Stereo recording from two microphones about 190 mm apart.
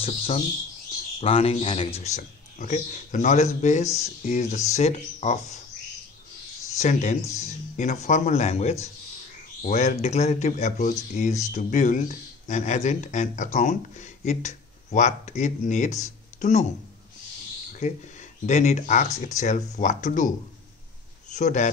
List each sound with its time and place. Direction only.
0.0 s speech: 30° left (ahead or behind)
6.8 s speech: 40° left (ahead or behind)
18.4 s a man's voice: 40° left (ahead or behind)